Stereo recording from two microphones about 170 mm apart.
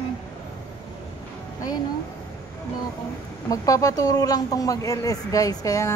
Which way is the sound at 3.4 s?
20° left (ahead or behind).